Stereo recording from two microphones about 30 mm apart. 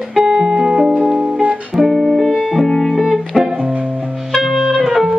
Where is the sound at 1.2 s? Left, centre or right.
Right.